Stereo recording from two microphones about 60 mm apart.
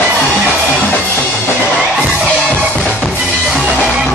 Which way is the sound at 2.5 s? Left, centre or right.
Right.